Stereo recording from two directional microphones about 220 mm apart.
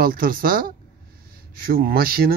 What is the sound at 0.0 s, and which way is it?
Speech, 40° right (ahead or behind).